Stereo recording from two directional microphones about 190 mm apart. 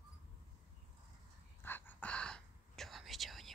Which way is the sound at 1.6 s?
10° left (ahead or behind).